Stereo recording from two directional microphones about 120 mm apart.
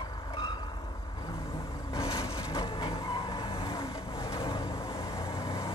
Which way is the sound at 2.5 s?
45° left (ahead or behind).